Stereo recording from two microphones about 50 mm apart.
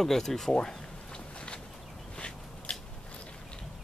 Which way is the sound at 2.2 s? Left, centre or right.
Left.